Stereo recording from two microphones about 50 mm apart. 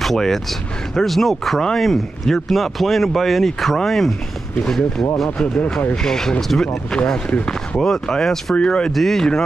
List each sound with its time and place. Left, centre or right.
0.0 s speech: centre
5.4 s speech: centre
7.4 s speech: centre
8.9 s speech: centre